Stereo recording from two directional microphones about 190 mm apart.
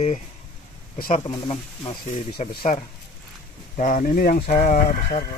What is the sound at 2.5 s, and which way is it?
Speech, 30° left (ahead or behind).